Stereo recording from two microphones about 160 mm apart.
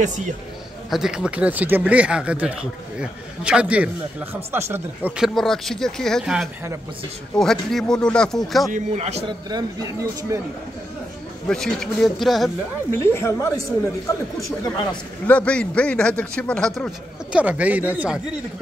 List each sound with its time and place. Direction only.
0.8 s speech: centre (ahead or behind)
8.7 s a man's voice: 45° right (ahead or behind)
9.5 s speech: 25° right (ahead or behind)
11.4 s speech: 5° left (ahead or behind)
12.9 s a man's voice: 15° left (ahead or behind)
15.2 s a man's voice: 10° left (ahead or behind)
17.3 s speech: 10° right (ahead or behind)